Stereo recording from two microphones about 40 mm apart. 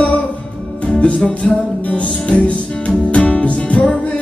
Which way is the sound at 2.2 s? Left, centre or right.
Left.